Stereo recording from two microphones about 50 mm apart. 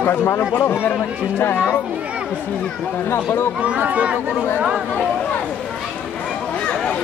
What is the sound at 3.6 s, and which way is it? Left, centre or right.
Speech, right.